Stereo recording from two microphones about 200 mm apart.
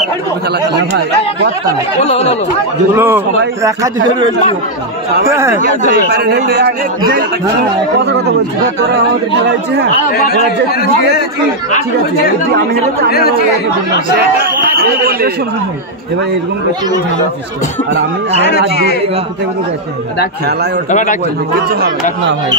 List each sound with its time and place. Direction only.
0.5 s speech: 55° right (ahead or behind)
2.0 s speech: 30° left (ahead or behind)
3.0 s a man's voice: 10° right (ahead or behind)
5.2 s a man's voice: 15° right (ahead or behind)
6.0 s speech: 55° right (ahead or behind)
9.3 s speech: 60° right (ahead or behind)
10.1 s speech: 50° left (ahead or behind)
13.1 s speech: 50° left (ahead or behind)
14.4 s a man's voice: 50° right (ahead or behind)
18.7 s speech: 55° left (ahead or behind)
20.9 s speech: 40° left (ahead or behind)
21.5 s speech: 50° right (ahead or behind)